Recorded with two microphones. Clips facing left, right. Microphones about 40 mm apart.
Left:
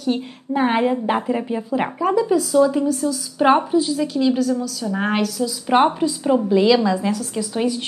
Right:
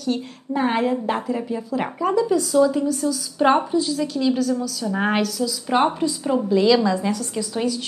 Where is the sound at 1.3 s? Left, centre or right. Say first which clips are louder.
Left 3 dB; left; by 5.4 s centre.